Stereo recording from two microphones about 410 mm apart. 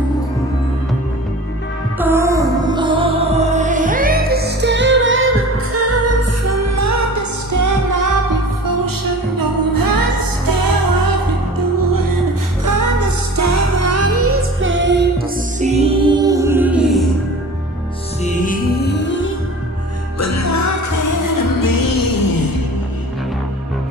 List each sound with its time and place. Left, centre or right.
2.0 s music: centre
18.2 s music: centre
20.2 s music: left